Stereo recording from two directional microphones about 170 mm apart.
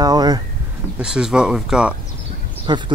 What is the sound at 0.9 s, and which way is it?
Speech, 5° right (ahead or behind).